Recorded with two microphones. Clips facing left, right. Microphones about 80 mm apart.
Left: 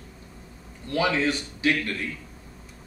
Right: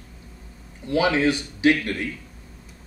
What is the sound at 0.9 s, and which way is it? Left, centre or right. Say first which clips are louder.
Speech: right 4 dB; centre.